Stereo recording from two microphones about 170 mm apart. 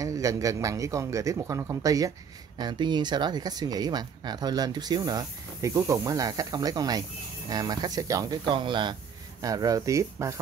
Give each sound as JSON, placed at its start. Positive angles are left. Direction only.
{"t": 0.0, "sound": "speech", "side_deg": -20}